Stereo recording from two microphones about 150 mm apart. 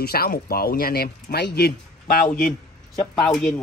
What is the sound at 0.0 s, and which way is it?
Speech, 90° left.